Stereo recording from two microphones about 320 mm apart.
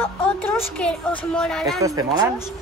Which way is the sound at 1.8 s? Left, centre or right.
Centre.